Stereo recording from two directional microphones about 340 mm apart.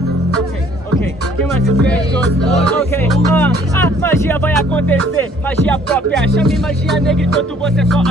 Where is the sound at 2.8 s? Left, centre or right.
Centre.